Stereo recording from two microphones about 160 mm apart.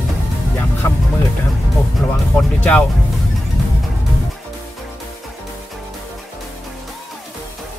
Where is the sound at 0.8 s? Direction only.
15° left (ahead or behind).